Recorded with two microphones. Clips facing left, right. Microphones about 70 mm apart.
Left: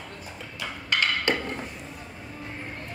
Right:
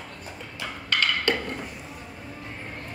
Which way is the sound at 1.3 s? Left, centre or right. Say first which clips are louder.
Right 1 dB; left.